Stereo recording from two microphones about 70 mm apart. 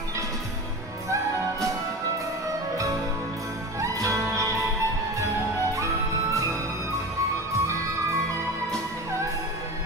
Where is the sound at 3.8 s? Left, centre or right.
Right.